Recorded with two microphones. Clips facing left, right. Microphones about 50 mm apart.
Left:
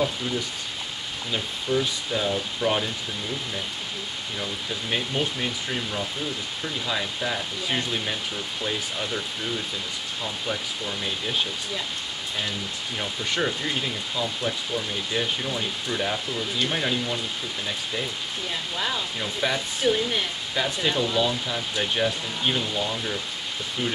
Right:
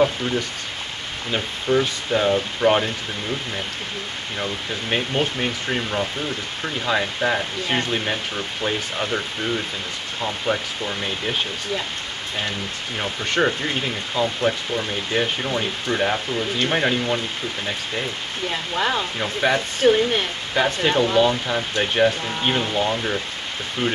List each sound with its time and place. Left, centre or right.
1.3 s speech: right
4.4 s speech: right
13.0 s speech: right
13.7 s speech: right
18.5 s speech: right